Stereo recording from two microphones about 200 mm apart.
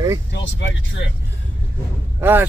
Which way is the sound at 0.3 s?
60° left (ahead or behind).